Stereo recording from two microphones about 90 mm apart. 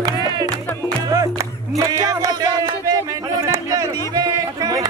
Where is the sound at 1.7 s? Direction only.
40° right (ahead or behind).